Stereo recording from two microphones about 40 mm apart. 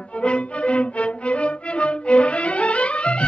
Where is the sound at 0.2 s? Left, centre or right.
Left.